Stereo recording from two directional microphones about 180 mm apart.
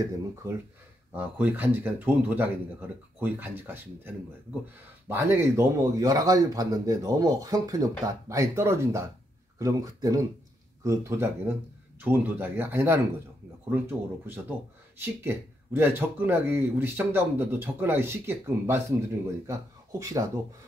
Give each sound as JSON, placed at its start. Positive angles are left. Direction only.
{"t": 0.4, "sound": "speech", "side_deg": -15}